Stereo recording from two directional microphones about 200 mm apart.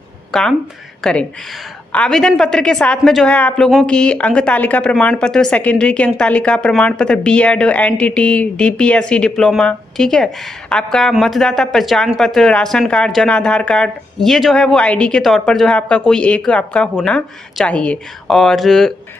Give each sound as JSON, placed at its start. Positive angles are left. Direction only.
{"t": 0.3, "sound": "a woman's voice", "side_deg": 0}